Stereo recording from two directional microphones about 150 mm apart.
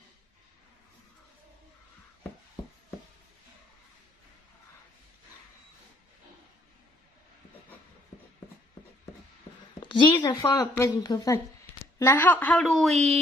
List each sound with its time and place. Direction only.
9.8 s a sound: 35° left (ahead or behind)
10.2 s a woman's voice: 25° left (ahead or behind)
12.6 s speech: centre (ahead or behind)